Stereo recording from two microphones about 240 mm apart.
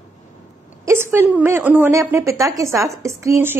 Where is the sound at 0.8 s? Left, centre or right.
Centre.